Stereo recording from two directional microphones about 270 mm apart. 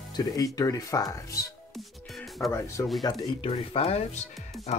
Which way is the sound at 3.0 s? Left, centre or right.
Centre.